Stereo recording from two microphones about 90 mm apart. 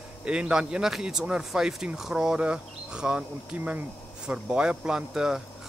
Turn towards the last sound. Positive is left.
turn(degrees=-10)  # may be behind; listen again after turning